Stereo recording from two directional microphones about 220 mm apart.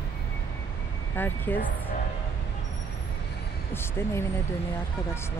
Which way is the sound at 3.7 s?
10° left (ahead or behind).